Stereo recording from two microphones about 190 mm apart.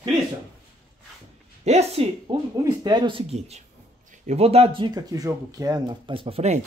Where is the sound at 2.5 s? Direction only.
20° right (ahead or behind).